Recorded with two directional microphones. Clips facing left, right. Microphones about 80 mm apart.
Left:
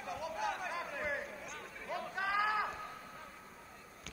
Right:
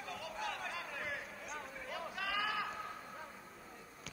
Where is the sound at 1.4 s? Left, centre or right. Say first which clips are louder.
Right 1 dB; centre.